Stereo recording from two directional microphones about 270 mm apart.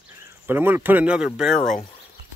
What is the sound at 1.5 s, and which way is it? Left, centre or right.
Speech, left.